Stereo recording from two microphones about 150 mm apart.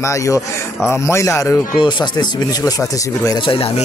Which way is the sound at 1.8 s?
30° left (ahead or behind).